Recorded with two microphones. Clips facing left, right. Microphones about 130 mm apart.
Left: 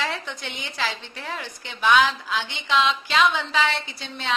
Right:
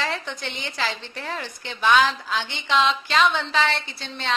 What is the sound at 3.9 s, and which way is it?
Speech, 5° left (ahead or behind).